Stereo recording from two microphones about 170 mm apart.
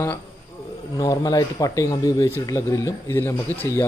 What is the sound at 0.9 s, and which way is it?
A man's voice, 20° left (ahead or behind).